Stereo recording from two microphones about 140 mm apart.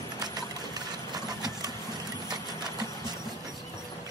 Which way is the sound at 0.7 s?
30° right (ahead or behind).